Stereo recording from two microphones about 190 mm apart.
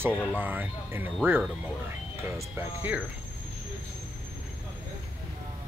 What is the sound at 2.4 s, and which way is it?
Speech, 10° right (ahead or behind).